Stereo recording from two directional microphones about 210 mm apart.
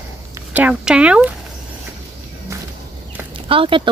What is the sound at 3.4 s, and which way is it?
Speech, 25° right (ahead or behind).